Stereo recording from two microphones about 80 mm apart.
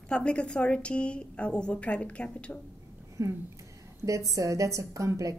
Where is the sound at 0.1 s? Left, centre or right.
Centre.